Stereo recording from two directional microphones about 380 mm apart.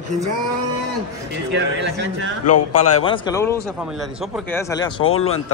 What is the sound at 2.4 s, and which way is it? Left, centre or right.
Speech, left.